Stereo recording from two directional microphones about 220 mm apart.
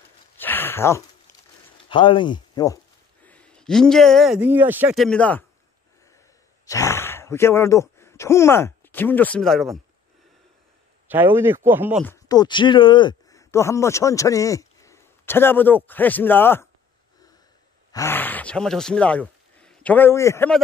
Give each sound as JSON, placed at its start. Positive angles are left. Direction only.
{"t": 0.4, "sound": "a sound", "side_deg": 10}
{"t": 1.9, "sound": "speech", "side_deg": 20}
{"t": 3.3, "sound": "a man's voice", "side_deg": 5}
{"t": 6.6, "sound": "speech", "side_deg": 15}
{"t": 11.1, "sound": "speech", "side_deg": -10}
{"t": 12.0, "sound": "speech", "side_deg": 15}
{"t": 17.9, "sound": "a man's voice", "side_deg": 10}